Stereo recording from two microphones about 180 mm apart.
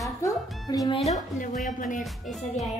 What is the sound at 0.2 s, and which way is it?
A woman's voice, 20° left (ahead or behind).